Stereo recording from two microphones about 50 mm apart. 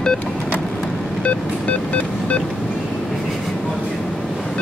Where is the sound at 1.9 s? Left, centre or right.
Left.